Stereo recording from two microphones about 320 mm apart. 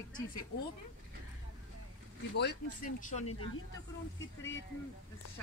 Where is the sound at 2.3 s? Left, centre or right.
Left.